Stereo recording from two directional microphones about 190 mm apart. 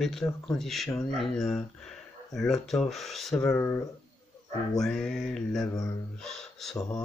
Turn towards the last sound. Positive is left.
turn(degrees=0)  # may be behind; listen again after turning